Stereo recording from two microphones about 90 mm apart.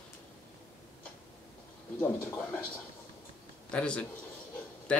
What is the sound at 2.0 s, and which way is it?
Speech, 25° left (ahead or behind).